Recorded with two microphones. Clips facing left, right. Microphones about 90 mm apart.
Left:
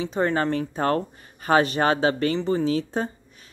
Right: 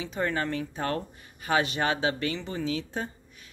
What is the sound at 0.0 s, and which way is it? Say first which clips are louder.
Speech: left 6 dB; 35° left (ahead or behind).